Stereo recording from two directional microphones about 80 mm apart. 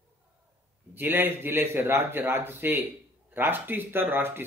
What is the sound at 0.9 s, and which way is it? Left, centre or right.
A man's voice, right.